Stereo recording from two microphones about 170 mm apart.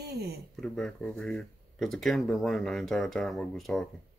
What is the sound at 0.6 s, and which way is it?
Speech, 5° left (ahead or behind).